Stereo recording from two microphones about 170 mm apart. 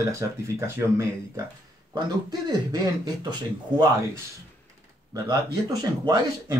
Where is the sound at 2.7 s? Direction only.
25° right (ahead or behind).